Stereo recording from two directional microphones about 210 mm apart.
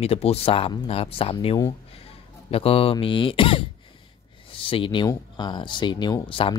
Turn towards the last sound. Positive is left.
turn(degrees=25)  # may be behind; listen again after turning